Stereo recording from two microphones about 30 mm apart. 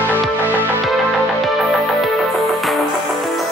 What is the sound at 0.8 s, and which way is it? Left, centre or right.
Music, centre.